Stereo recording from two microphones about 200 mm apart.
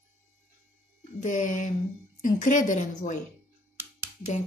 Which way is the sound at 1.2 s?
40° left (ahead or behind).